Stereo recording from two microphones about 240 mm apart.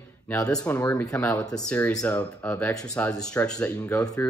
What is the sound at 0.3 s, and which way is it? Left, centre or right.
Speech, centre.